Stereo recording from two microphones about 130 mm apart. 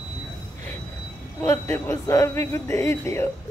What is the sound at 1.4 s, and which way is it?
A man's voice, 20° left (ahead or behind).